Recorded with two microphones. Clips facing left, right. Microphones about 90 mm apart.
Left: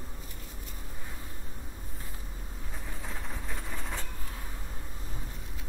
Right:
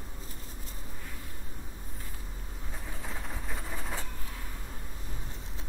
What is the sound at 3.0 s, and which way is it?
Train, 5° right (ahead or behind).